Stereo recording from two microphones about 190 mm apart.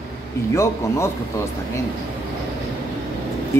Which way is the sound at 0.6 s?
15° left (ahead or behind).